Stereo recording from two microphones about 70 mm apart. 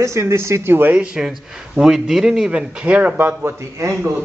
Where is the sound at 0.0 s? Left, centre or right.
Right.